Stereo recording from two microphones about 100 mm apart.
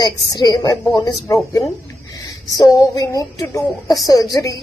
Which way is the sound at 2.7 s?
40° left (ahead or behind).